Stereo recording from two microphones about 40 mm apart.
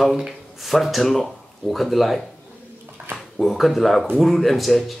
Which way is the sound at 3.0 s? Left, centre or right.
Right.